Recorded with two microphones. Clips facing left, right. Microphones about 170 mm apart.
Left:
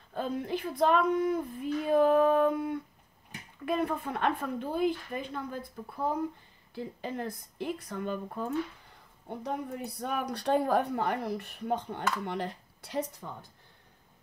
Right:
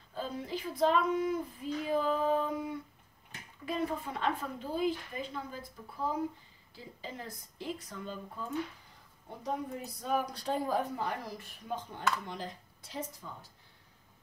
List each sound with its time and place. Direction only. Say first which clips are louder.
0.1 s speech: left 5 dB; 60° left (ahead or behind)
6.7 s speech: left 8 dB; 60° left (ahead or behind)